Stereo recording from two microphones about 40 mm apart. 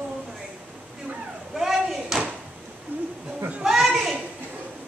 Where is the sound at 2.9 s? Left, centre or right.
Right.